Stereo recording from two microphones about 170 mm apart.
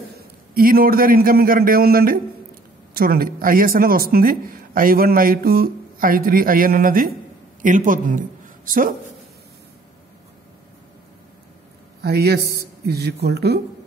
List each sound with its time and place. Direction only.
0.6 s speech: 60° right (ahead or behind)
12.0 s speech: 70° right (ahead or behind)